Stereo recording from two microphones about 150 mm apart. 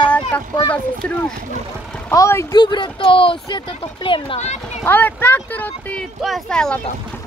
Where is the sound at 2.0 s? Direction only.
15° left (ahead or behind).